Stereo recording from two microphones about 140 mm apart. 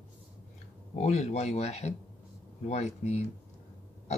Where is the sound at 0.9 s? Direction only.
55° left (ahead or behind).